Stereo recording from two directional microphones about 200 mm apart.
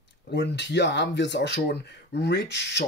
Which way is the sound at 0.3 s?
60° left (ahead or behind).